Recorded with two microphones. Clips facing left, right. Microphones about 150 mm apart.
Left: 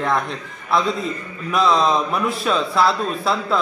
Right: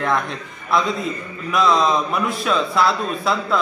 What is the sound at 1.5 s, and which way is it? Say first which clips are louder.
Speech: even; centre (ahead or behind).